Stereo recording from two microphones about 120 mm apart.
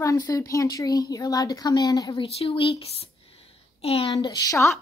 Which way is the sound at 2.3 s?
55° left (ahead or behind).